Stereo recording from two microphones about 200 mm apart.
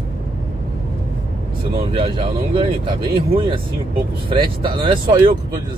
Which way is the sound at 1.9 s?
25° right (ahead or behind).